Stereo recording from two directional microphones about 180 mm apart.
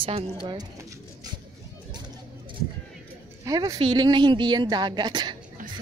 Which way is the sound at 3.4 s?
20° right (ahead or behind).